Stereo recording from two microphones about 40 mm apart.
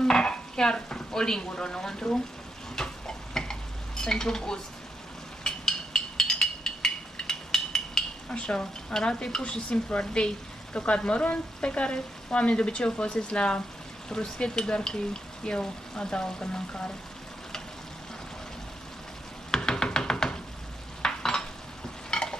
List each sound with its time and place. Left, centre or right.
0.0 s stir: centre
2.8 s a sound: centre
3.3 s stir: centre
5.4 s a sound: centre
8.3 s speech: left
19.5 s music: centre
21.0 s stir: centre